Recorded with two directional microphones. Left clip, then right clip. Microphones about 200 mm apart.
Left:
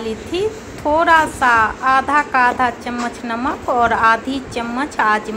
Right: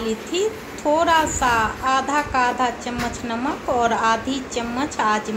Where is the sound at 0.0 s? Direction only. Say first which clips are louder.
Left 2 dB; 15° left (ahead or behind).